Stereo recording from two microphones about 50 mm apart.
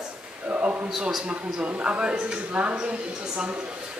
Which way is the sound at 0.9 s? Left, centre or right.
Centre.